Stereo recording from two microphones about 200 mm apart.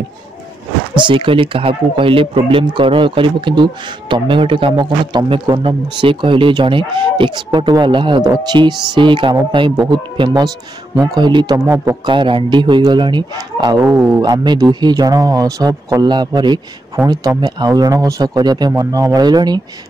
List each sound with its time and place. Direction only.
0.9 s a man's voice: 25° right (ahead or behind)
12.1 s speech: 25° right (ahead or behind)
13.7 s speech: 10° right (ahead or behind)